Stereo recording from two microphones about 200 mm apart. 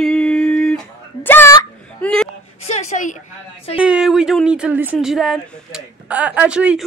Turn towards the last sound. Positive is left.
turn(degrees=-5)  # may be behind; listen again after turning